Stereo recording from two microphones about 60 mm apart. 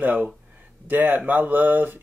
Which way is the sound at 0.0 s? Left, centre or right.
Right.